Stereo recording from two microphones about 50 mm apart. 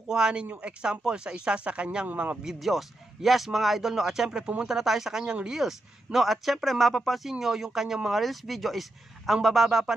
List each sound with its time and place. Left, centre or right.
0.1 s speech: centre
2.0 s a man's voice: right
2.4 s speech: centre
6.1 s speech: centre
7.2 s speech: centre